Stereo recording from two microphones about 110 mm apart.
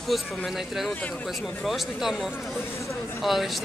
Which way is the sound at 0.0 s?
Centre (ahead or behind).